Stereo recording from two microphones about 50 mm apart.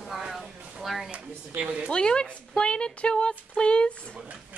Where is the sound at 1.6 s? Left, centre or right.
Right.